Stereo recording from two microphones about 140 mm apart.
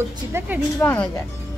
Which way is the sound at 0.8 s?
15° left (ahead or behind).